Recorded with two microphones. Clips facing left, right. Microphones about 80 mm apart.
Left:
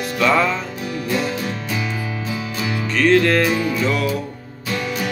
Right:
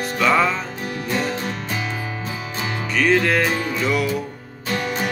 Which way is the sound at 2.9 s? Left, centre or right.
Centre.